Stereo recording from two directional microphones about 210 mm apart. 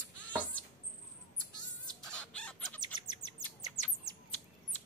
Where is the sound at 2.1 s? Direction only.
5° left (ahead or behind).